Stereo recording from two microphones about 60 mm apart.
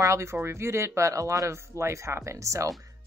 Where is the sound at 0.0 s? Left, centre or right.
Right.